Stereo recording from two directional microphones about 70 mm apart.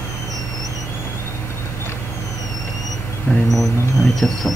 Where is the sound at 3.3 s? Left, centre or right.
Left.